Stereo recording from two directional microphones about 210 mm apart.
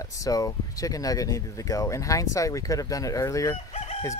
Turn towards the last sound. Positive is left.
turn(degrees=30)  # may be behind; listen again after turning